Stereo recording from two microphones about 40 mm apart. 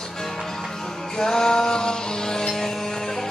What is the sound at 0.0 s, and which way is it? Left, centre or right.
Music, centre.